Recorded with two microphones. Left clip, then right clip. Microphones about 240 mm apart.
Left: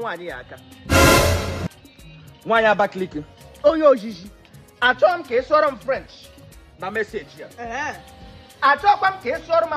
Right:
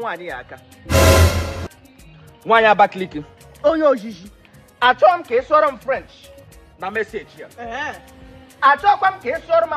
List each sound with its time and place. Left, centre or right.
0.0 s music: centre
2.4 s speech: centre
3.6 s speech: centre